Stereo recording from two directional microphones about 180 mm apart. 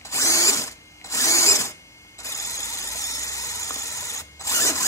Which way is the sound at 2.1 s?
15° left (ahead or behind).